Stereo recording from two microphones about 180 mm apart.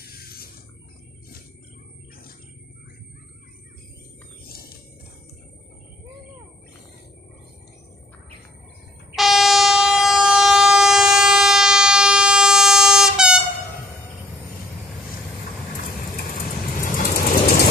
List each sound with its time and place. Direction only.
0.0 s a sound: 60° left (ahead or behind)
9.1 s train: centre (ahead or behind)
16.8 s vehicle: 55° left (ahead or behind)